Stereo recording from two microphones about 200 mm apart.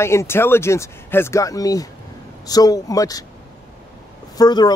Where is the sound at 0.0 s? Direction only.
15° left (ahead or behind).